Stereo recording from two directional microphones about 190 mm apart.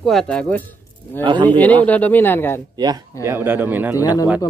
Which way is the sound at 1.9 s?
10° left (ahead or behind).